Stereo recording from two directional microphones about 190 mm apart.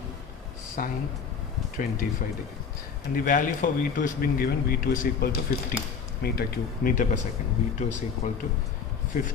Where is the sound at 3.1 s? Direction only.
45° left (ahead or behind).